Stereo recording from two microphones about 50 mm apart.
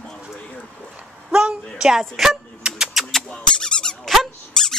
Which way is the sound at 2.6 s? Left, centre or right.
Centre.